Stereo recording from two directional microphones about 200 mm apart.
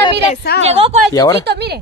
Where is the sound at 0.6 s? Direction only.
30° right (ahead or behind).